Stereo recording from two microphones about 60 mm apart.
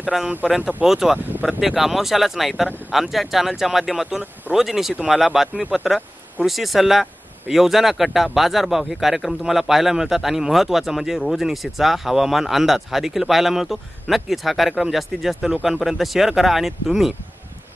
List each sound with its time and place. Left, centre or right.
0.1 s speech: centre
1.1 s speech: right
1.6 s speech: centre